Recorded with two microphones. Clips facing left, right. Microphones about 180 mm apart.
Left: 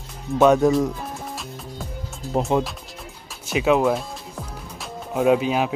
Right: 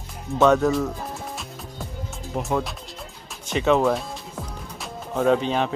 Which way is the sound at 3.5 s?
5° left (ahead or behind).